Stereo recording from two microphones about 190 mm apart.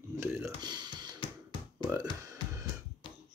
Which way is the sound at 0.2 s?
15° right (ahead or behind).